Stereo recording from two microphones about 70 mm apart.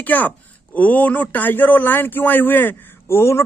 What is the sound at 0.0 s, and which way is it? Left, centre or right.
A man's voice, left.